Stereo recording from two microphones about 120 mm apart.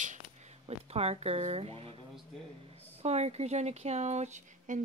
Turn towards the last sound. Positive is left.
turn(degrees=-75)  # may be behind; listen again after turning